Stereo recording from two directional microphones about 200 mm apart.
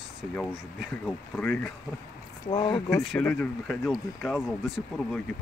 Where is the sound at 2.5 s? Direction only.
25° left (ahead or behind).